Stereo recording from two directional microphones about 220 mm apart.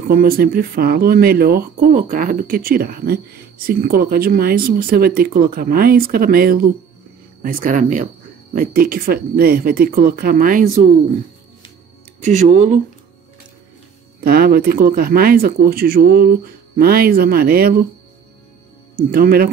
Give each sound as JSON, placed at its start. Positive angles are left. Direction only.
{"t": 0.1, "sound": "speech", "side_deg": -45}
{"t": 12.2, "sound": "speech", "side_deg": -35}
{"t": 14.2, "sound": "speech", "side_deg": -45}
{"t": 19.0, "sound": "speech", "side_deg": -40}